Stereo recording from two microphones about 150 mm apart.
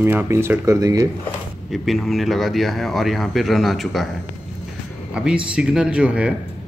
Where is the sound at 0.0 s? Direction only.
15° right (ahead or behind).